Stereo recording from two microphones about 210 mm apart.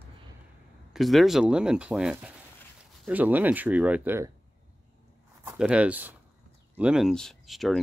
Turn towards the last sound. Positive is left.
turn(degrees=0)  # may be behind; listen again after turning